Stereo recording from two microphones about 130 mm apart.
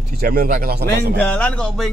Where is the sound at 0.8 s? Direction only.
10° left (ahead or behind).